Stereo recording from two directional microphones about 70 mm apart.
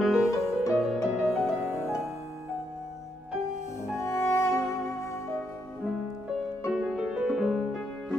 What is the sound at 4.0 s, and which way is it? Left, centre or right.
Music, left.